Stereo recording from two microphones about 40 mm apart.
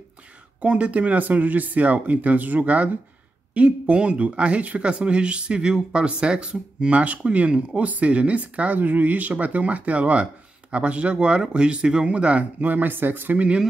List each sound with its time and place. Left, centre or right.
0.6 s speech: right
12.6 s speech: right